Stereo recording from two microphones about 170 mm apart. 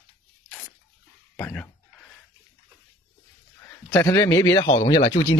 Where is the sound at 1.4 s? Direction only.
10° left (ahead or behind).